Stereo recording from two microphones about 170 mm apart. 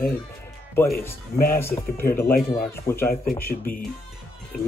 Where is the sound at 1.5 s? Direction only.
15° left (ahead or behind).